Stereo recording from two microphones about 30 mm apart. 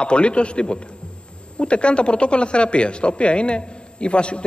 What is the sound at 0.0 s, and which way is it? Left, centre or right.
Speech, left.